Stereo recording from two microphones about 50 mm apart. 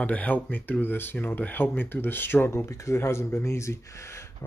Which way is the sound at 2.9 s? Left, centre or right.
Left.